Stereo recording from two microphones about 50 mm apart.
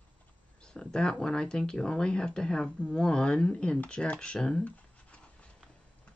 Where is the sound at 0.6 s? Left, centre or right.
Centre.